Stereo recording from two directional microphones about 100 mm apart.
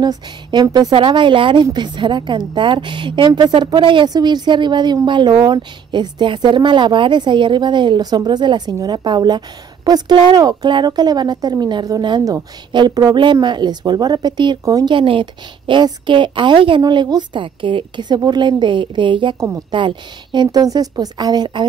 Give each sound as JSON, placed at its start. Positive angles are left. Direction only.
{"t": 0.0, "sound": "a woman's voice", "side_deg": -45}
{"t": 0.9, "sound": "a woman's voice", "side_deg": -55}
{"t": 10.1, "sound": "a woman's voice", "side_deg": -55}
{"t": 14.6, "sound": "speech", "side_deg": -35}
{"t": 14.9, "sound": "a woman's voice", "side_deg": -55}
{"t": 16.8, "sound": "a woman's voice", "side_deg": -45}